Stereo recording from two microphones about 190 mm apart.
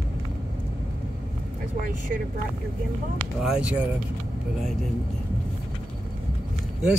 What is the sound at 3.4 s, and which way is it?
Speech, 5° right (ahead or behind).